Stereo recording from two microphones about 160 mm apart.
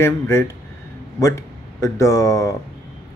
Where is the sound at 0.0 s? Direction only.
15° left (ahead or behind).